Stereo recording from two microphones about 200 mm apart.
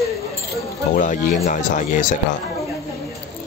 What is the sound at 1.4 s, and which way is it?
Speech, 40° left (ahead or behind).